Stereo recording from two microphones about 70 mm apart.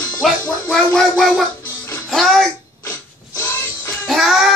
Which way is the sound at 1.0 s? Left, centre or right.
Centre.